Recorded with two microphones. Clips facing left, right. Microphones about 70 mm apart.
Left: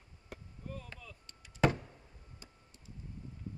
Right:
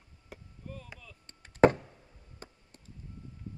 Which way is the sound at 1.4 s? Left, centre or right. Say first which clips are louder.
Right 8 dB; right.